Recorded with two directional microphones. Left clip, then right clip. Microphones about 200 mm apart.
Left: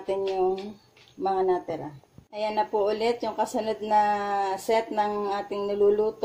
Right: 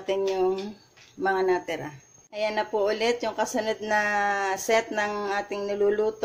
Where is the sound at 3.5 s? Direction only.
Centre (ahead or behind).